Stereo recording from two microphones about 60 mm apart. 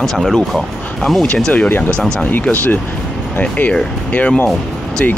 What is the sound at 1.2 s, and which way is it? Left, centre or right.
Speech, centre.